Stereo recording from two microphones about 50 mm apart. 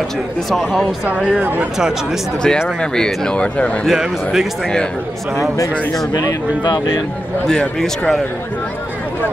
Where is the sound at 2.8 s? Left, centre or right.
Centre.